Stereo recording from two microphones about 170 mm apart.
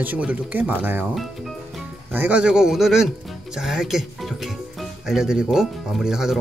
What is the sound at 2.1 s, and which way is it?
Speech, 10° right (ahead or behind).